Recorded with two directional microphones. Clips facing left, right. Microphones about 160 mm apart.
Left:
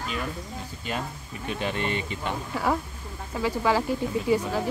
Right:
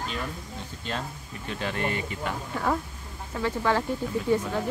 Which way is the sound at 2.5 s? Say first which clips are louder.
Left 1 dB; 5° left (ahead or behind).